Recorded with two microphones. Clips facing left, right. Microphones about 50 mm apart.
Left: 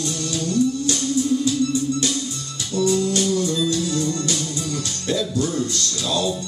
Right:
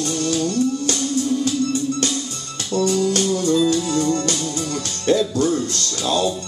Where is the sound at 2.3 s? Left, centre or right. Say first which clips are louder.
Right 3 dB; right.